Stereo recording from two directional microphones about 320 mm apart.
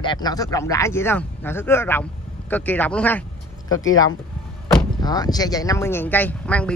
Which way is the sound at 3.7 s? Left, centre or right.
Left.